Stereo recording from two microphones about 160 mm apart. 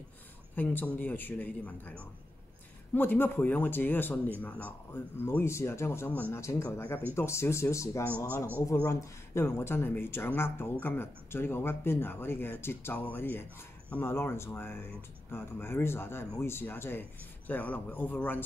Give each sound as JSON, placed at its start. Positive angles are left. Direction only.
{"t": 0.6, "sound": "speech", "side_deg": 10}